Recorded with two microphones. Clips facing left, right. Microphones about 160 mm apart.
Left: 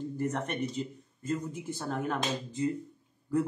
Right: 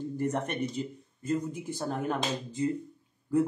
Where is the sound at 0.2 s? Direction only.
15° right (ahead or behind).